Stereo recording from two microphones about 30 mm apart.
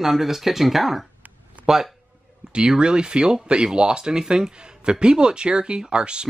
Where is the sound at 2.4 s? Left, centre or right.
Right.